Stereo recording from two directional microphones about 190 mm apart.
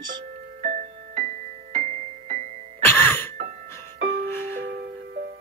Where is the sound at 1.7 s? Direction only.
40° right (ahead or behind).